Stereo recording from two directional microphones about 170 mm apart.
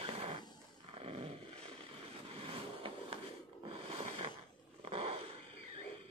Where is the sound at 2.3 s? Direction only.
35° right (ahead or behind).